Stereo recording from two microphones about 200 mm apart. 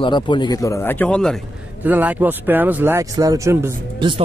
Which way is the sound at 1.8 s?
10° right (ahead or behind).